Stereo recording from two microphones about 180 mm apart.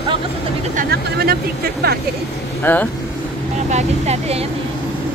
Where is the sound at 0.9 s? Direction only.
65° right (ahead or behind).